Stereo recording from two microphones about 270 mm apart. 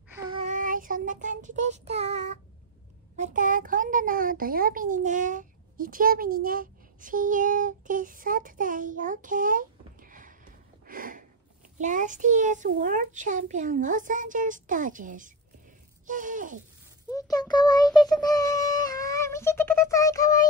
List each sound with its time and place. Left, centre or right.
0.1 s child singing: right
3.2 s a child's voice: right
17.1 s child singing: centre